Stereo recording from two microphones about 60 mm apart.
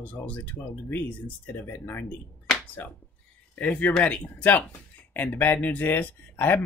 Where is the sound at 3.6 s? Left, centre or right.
Left.